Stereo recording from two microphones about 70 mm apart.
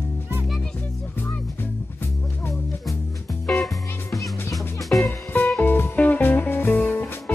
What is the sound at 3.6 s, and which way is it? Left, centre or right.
Music, centre.